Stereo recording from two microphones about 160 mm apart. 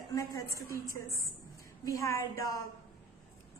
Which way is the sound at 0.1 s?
20° left (ahead or behind).